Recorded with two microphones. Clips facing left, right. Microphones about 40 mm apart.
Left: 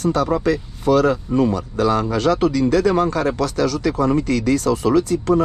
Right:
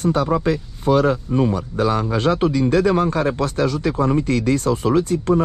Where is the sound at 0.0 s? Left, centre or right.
Right.